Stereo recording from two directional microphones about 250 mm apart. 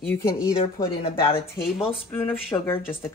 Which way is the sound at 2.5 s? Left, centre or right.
Centre.